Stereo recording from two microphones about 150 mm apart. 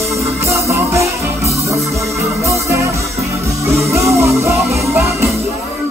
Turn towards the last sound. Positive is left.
turn(degrees=-20)  # may be behind; listen again after turning